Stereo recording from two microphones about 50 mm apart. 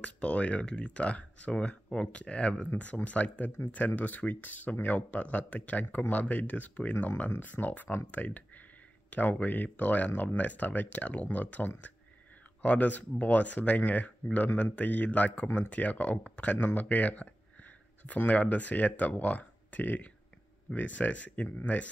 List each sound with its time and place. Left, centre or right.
0.0 s speech: left